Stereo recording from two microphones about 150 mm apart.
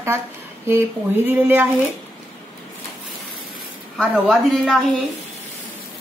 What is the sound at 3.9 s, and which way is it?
A woman's voice, 5° right (ahead or behind).